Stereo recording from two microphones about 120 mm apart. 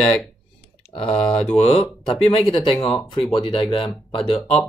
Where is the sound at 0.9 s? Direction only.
55° left (ahead or behind).